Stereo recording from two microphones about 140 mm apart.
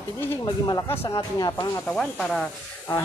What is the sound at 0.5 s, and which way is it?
Speech, 25° left (ahead or behind).